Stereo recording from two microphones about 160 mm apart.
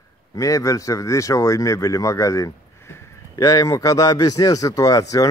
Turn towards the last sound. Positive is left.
turn(degrees=20)  # may be behind; listen again after turning